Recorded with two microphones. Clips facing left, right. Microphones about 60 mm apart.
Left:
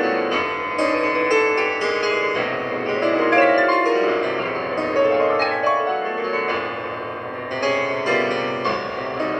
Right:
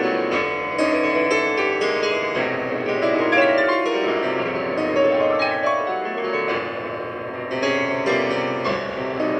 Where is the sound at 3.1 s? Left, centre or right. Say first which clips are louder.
Left 2 dB; left.